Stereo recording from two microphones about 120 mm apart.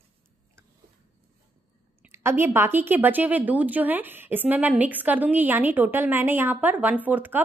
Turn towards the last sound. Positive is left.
turn(degrees=-15)  # may be behind; listen again after turning